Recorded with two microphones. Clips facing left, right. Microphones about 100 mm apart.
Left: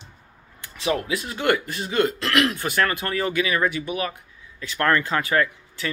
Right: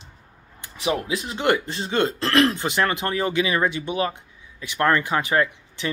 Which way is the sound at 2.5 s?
20° right (ahead or behind).